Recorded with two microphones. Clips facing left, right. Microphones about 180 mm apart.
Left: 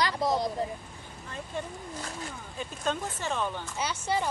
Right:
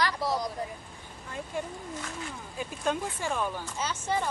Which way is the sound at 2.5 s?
10° right (ahead or behind).